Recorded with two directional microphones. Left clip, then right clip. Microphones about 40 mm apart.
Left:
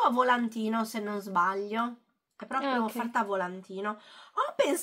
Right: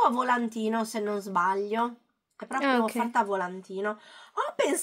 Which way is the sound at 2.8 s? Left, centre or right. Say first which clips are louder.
Right 4 dB; right.